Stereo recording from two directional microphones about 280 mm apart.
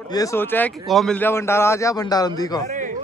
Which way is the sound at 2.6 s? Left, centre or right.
Right.